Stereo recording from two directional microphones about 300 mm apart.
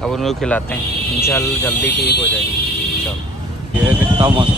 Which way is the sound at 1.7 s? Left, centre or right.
Left.